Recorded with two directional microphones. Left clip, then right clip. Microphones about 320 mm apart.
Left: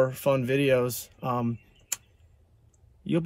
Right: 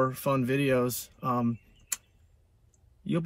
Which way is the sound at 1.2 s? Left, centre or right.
Centre.